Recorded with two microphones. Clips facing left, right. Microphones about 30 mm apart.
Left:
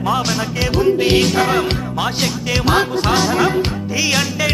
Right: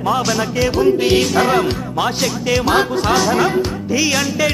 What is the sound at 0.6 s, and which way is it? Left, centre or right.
Music, left.